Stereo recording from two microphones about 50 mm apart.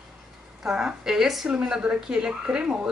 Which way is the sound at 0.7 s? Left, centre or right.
Centre.